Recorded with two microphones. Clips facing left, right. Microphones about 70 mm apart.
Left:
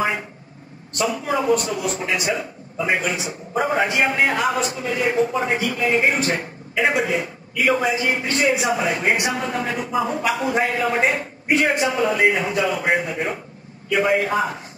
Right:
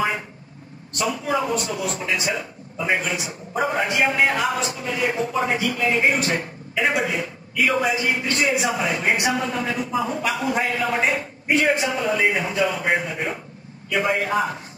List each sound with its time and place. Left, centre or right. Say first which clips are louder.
1.1 s a man's voice: left 4 dB; left